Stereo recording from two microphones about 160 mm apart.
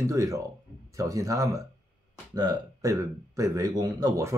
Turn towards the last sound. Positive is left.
turn(degrees=-20)  # may be behind; listen again after turning